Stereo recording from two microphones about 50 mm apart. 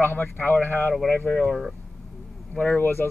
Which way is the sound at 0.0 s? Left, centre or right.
Left.